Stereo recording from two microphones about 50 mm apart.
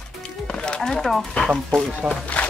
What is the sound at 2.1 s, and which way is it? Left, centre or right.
Speech, left.